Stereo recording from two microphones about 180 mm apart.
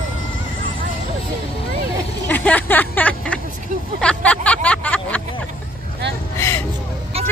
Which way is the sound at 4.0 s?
5° left (ahead or behind).